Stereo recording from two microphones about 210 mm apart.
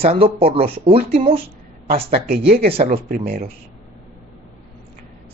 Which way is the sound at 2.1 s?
50° right (ahead or behind).